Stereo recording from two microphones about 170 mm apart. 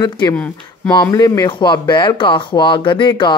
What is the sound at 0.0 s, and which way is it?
Speech, 25° left (ahead or behind).